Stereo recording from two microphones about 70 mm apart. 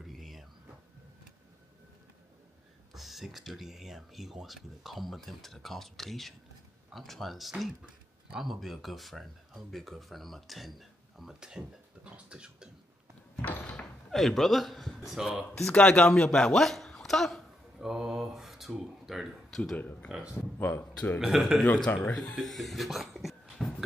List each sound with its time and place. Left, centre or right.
0.0 s a sound: centre
2.9 s speech: centre
13.4 s door: left
14.1 s speech: centre
15.7 s a man's voice: centre
17.7 s speech: centre
20.1 s speech: centre
20.5 s speech: left
21.2 s speech: centre
21.9 s speech: left
22.3 s laughter: centre